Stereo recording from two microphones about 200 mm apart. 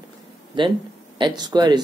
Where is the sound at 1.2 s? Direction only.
20° right (ahead or behind).